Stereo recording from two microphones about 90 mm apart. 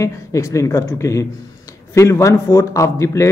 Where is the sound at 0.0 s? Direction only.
35° left (ahead or behind).